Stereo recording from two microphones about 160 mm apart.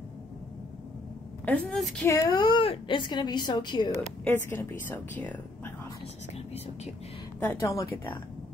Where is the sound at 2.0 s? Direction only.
20° left (ahead or behind).